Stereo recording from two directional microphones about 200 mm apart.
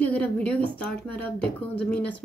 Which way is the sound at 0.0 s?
10° left (ahead or behind).